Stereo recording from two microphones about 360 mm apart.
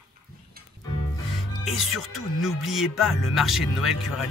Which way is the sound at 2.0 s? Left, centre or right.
Centre.